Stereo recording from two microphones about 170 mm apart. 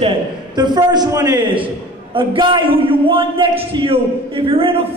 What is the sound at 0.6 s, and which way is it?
A man's voice, 25° right (ahead or behind).